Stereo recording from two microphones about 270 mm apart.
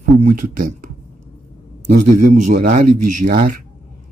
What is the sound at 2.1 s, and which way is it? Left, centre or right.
Speech, right.